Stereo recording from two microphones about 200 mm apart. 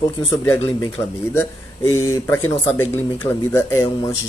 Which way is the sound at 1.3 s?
15° left (ahead or behind).